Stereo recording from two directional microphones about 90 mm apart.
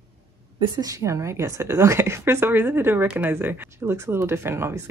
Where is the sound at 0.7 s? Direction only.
45° right (ahead or behind).